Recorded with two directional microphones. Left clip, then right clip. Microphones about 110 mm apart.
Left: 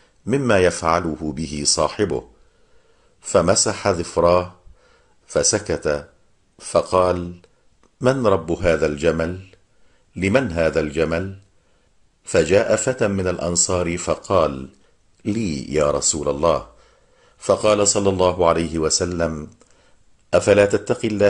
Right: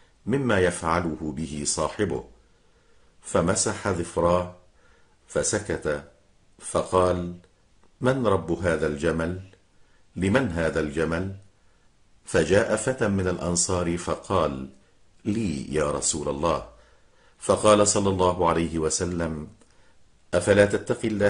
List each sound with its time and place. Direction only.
0.3 s speech: 35° left (ahead or behind)
12.3 s speech: 25° left (ahead or behind)